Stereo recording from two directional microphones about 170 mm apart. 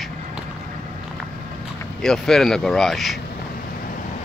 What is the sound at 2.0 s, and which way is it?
Speech, 5° left (ahead or behind).